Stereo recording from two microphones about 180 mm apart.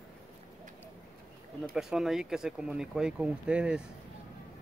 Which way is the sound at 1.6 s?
5° right (ahead or behind).